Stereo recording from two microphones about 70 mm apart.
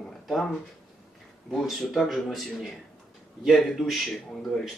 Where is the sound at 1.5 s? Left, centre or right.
Centre.